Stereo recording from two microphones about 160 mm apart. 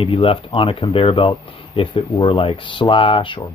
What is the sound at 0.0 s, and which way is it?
Speech, 35° left (ahead or behind).